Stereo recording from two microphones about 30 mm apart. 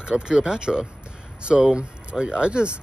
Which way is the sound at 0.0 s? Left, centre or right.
Right.